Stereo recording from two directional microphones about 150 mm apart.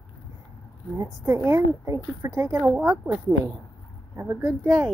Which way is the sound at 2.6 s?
10° right (ahead or behind).